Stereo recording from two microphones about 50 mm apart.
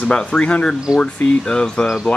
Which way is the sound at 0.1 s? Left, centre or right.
Centre.